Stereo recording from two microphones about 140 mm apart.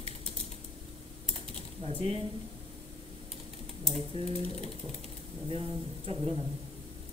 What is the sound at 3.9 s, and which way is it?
Speech, 50° right (ahead or behind).